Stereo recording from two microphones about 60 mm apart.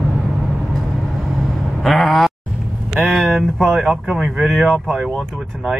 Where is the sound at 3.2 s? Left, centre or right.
Centre.